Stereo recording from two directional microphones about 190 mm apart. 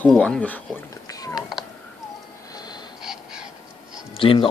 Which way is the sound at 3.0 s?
5° right (ahead or behind).